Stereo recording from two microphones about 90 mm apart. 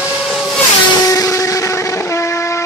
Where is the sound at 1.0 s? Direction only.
40° left (ahead or behind).